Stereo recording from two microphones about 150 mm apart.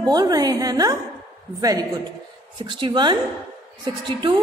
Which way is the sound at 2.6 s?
30° right (ahead or behind).